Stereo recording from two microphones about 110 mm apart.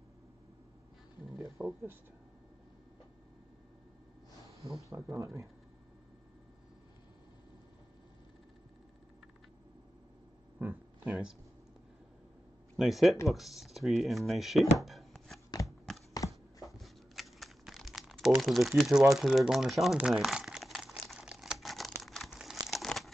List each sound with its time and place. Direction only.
1.6 s speech: 20° right (ahead or behind)
4.8 s speech: 25° right (ahead or behind)
10.6 s a sound: 15° right (ahead or behind)
12.7 s speech: 5° right (ahead or behind)
14.8 s a sound: centre (ahead or behind)
15.6 s clip-clop: centre (ahead or behind)
16.1 s computer keyboard: 30° left (ahead or behind)
16.6 s crumpling: centre (ahead or behind)